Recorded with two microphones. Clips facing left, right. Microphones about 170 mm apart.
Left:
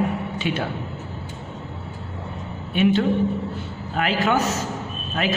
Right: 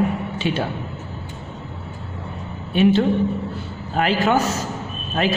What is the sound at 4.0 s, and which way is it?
Speech, 30° right (ahead or behind).